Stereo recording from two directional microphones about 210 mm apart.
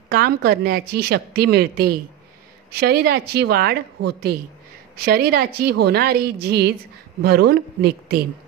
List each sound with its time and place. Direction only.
0.1 s a woman's voice: 45° right (ahead or behind)